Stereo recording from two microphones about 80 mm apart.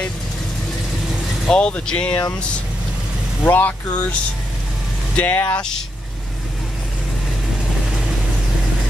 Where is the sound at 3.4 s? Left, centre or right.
Left.